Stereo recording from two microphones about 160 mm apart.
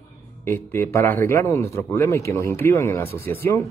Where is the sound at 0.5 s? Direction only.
15° left (ahead or behind).